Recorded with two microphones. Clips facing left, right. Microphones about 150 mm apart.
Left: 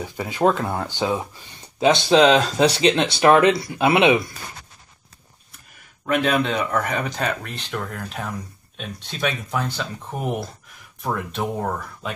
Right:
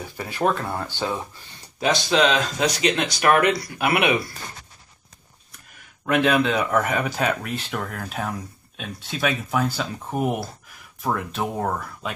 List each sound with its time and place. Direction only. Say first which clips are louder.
0.0 s speech: left 4 dB; 15° left (ahead or behind)
1.8 s speech: left 5 dB; 25° left (ahead or behind)
6.0 s speech: right 1 dB; centre (ahead or behind)